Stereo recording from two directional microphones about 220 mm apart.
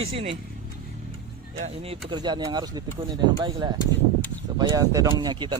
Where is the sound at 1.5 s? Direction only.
30° right (ahead or behind).